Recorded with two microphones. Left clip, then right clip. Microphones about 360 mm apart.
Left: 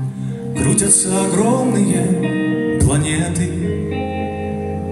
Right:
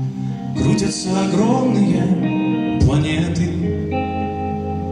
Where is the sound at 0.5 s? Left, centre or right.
Left.